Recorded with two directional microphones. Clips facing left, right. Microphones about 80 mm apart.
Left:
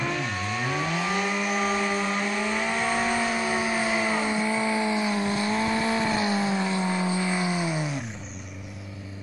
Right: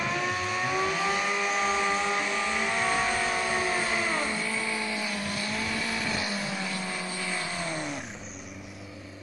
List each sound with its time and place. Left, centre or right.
0.0 s vehicle: centre